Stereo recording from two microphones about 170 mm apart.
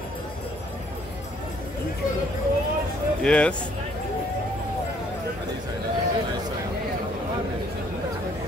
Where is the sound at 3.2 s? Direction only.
5° left (ahead or behind).